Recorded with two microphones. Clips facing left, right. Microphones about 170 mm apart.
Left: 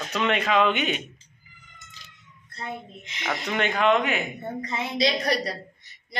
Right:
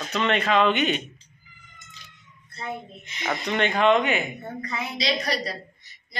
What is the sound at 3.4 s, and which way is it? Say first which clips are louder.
Speech: right 2 dB; 5° left (ahead or behind).